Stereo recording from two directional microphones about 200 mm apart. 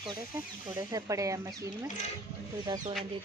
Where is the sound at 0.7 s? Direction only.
15° right (ahead or behind).